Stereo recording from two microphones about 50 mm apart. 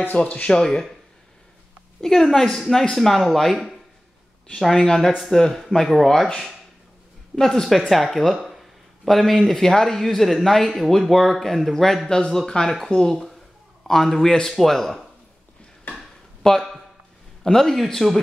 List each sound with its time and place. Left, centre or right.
0.2 s speech: left
0.5 s a woman's voice: centre
2.0 s a woman's voice: centre
15.9 s a sound: centre
17.4 s a woman's voice: centre